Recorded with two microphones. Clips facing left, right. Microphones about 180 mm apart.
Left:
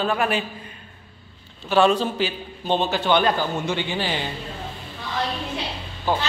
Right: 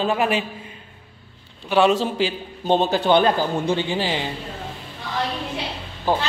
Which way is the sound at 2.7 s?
40° right (ahead or behind).